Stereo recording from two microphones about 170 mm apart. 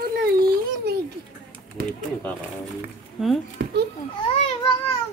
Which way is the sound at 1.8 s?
65° right (ahead or behind).